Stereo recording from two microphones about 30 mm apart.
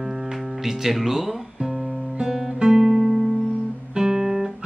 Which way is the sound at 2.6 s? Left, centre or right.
Centre.